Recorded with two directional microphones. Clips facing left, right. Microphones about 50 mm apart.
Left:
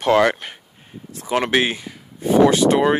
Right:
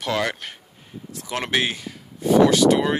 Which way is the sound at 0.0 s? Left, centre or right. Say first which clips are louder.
Left 8 dB; left.